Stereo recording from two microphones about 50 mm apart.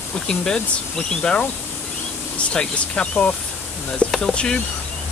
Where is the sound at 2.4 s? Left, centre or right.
Left.